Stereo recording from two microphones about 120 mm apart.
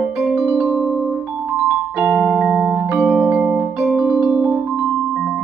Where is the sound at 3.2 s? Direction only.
10° right (ahead or behind).